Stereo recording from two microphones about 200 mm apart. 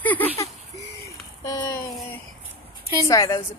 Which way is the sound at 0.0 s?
10° left (ahead or behind).